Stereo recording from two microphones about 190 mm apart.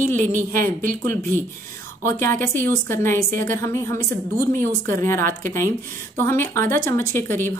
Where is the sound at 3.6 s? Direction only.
15° left (ahead or behind).